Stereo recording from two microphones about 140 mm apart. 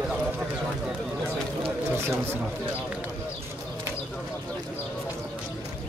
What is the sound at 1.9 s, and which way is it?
Speech, 20° right (ahead or behind).